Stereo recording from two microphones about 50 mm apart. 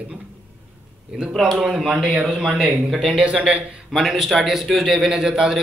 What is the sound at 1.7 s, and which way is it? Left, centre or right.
Speech, centre.